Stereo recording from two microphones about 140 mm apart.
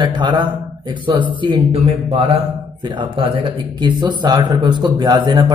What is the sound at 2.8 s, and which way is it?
Speech, 35° right (ahead or behind).